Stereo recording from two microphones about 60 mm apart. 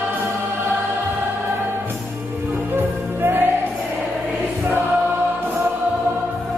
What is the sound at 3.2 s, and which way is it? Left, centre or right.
Music, right.